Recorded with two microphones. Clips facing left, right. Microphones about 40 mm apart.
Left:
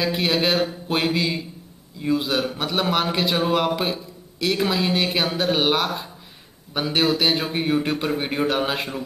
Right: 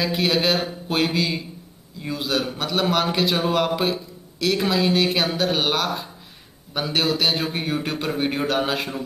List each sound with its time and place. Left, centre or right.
0.0 s a man's voice: centre